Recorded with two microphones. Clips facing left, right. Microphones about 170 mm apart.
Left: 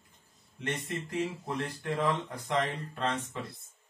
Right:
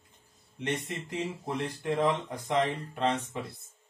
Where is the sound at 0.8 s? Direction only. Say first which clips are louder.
Left 1 dB; 20° right (ahead or behind).